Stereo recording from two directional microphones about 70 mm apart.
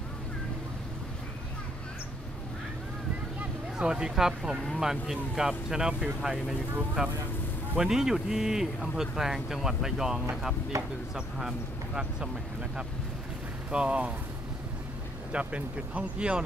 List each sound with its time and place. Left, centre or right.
3.7 s speech: centre
10.7 s speech: right
11.1 s speech: centre
13.7 s speech: centre
15.3 s speech: centre